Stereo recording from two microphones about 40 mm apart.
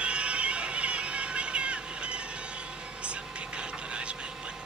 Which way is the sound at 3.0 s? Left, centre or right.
Right.